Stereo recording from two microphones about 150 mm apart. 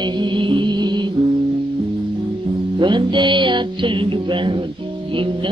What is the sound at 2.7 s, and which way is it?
Music, 30° right (ahead or behind).